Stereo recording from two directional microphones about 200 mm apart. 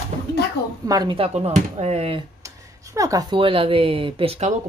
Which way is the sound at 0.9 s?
20° right (ahead or behind).